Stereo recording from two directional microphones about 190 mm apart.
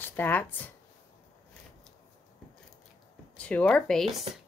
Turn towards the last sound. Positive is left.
turn(degrees=0)  # may be behind; listen again after turning